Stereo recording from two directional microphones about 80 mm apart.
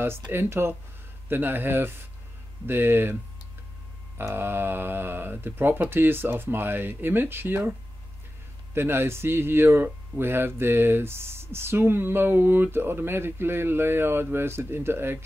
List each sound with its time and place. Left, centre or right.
0.0 s speech: right
4.2 s speech: right
8.7 s speech: right